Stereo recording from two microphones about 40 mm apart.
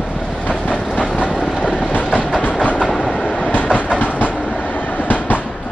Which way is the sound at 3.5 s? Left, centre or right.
Left.